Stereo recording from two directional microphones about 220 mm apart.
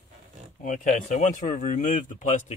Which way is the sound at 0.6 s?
35° left (ahead or behind).